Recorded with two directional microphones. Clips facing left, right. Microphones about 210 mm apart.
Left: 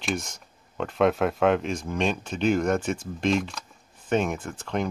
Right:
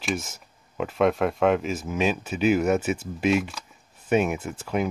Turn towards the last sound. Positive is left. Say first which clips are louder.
# right 2 dB
turn(degrees=-5)  # may be behind; listen again after turning